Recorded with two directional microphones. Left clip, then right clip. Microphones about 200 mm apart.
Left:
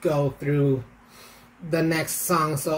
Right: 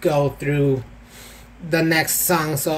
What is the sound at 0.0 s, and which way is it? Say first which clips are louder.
Speech: right 5 dB; 15° left (ahead or behind).